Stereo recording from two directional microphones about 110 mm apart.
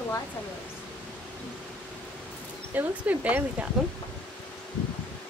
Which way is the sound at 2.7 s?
15° right (ahead or behind).